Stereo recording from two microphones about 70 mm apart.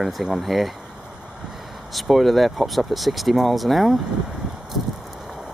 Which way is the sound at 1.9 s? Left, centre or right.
Centre.